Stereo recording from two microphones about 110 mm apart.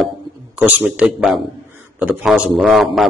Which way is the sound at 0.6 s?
15° right (ahead or behind).